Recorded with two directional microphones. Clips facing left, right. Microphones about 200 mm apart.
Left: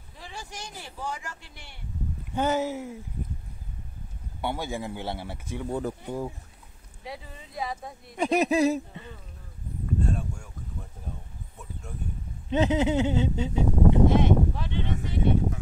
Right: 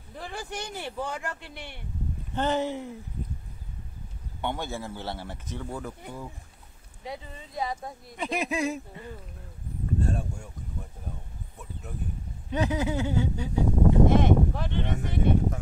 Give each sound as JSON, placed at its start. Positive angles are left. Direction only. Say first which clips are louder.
{"t": 0.2, "sound": "speech", "louder": "right 5 dB", "side_deg": -60}
{"t": 2.3, "sound": "speech", "louder": "left 1 dB", "side_deg": 10}
{"t": 4.4, "sound": "speech", "louder": "left 1 dB", "side_deg": 10}
{"t": 5.8, "sound": "speech", "louder": "left 7 dB", "side_deg": 40}
{"t": 7.1, "sound": "speech", "louder": "right 2 dB", "side_deg": 0}
{"t": 8.2, "sound": "speech", "louder": "left 7 dB", "side_deg": 40}
{"t": 12.4, "sound": "speech", "louder": "left 4 dB", "side_deg": 25}
{"t": 14.2, "sound": "speech", "louder": "even", "side_deg": -50}